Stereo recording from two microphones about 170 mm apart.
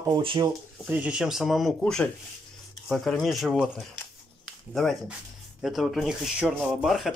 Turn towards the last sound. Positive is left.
turn(degrees=0)  # may be behind; listen again after turning